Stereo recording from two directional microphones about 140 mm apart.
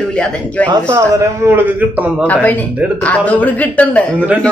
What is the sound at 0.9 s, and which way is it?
A man's voice, 20° right (ahead or behind).